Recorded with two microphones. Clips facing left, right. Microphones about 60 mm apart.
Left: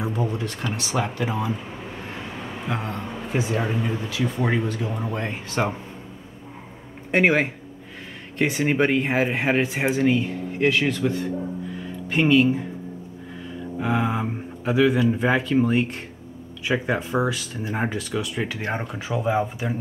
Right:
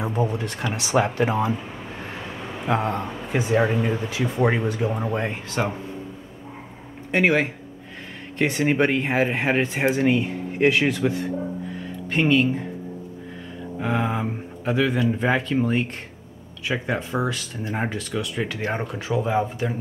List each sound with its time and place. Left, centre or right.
0.0 s speech: right
1.1 s speech: right
2.6 s speech: right
4.9 s speech: centre
5.3 s speech: centre
7.1 s speech: centre
11.1 s music: centre
13.7 s speech: centre